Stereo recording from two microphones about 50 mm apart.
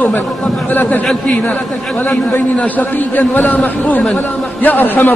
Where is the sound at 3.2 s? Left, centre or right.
Left.